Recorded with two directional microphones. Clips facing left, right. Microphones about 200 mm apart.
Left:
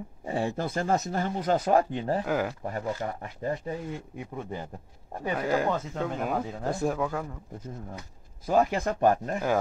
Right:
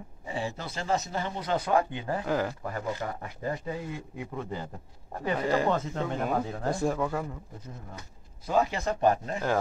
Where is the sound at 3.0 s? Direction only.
25° left (ahead or behind).